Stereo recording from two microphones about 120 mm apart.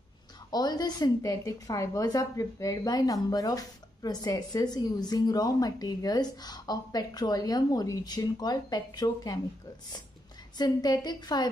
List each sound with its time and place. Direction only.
0.5 s a woman's voice: 35° left (ahead or behind)
10.6 s a woman's voice: 35° left (ahead or behind)